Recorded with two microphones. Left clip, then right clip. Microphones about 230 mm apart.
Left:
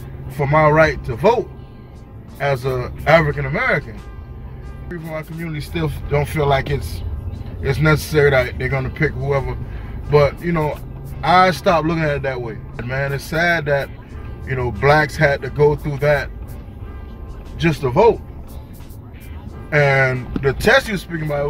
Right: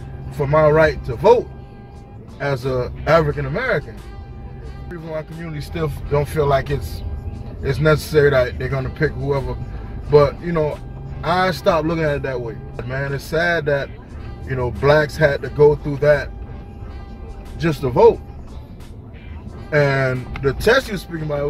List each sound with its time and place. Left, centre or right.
0.5 s speech: centre
2.3 s speech: centre
4.8 s speech: centre
17.6 s speech: centre
19.7 s speech: centre